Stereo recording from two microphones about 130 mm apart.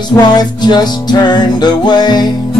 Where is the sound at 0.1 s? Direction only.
30° left (ahead or behind).